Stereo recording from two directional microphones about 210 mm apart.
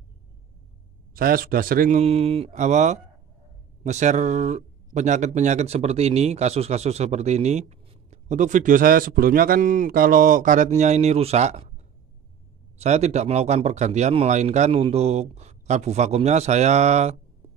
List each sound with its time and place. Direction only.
1.1 s speech: 45° right (ahead or behind)